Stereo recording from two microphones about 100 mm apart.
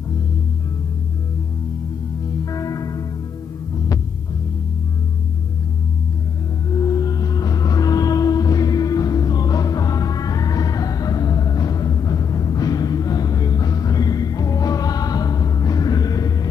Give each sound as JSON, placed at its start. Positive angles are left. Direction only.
{"t": 2.5, "sound": "music", "side_deg": 35}
{"t": 6.7, "sound": "music", "side_deg": 40}